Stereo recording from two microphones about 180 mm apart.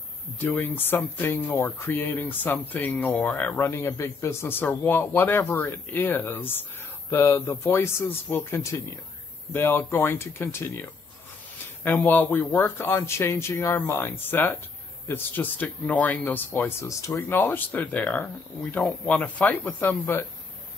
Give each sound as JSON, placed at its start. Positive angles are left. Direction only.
{"t": 0.4, "sound": "speech", "side_deg": 10}